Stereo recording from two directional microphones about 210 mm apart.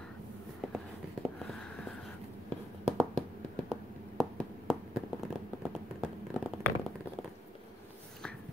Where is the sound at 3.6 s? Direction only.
Centre (ahead or behind).